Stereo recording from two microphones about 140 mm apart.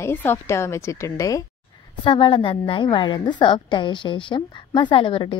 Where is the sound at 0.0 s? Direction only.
15° left (ahead or behind).